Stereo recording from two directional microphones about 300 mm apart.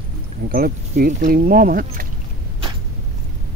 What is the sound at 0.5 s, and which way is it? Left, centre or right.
Speech, right.